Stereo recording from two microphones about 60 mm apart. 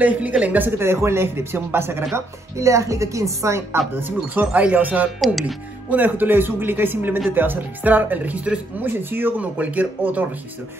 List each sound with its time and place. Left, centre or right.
0.0 s speech: right
2.1 s speech: right
3.9 s speech: right
8.8 s speech: right
9.4 s speech: right